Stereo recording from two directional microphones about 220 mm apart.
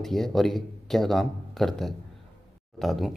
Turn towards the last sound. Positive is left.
turn(degrees=0)  # may be behind; listen again after turning